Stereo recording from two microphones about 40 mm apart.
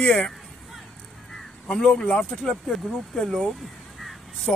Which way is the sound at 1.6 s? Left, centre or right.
Left.